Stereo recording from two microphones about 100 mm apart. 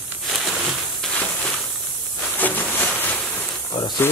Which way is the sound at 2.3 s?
15° left (ahead or behind).